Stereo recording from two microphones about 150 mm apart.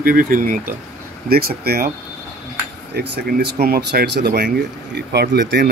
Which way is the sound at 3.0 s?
90° right.